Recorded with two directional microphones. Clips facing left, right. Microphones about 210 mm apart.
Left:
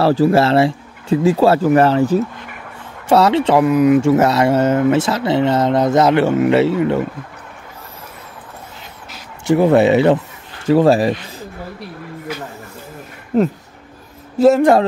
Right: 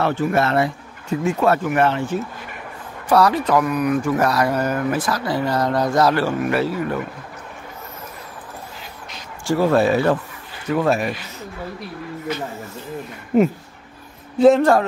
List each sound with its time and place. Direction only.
0.0 s speech: 35° left (ahead or behind)
3.1 s speech: 25° left (ahead or behind)
9.5 s speech: 20° left (ahead or behind)
10.7 s speech: 30° left (ahead or behind)
13.3 s speech: 5° right (ahead or behind)